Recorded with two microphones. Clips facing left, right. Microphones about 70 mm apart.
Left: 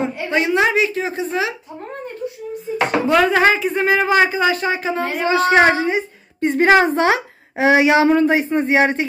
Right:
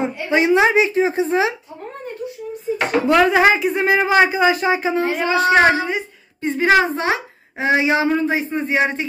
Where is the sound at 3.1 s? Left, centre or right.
Centre.